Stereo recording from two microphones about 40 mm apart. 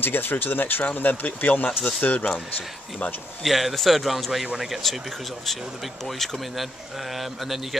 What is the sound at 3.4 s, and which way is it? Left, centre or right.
A man's voice, centre.